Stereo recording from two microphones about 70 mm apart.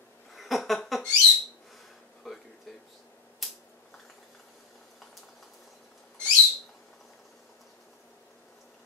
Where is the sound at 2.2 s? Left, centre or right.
Centre.